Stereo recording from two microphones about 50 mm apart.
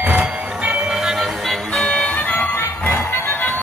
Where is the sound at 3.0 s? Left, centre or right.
Left.